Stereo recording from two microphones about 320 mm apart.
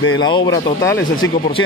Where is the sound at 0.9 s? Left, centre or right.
Left.